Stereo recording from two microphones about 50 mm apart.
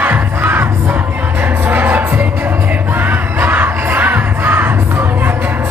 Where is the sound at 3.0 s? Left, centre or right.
Right.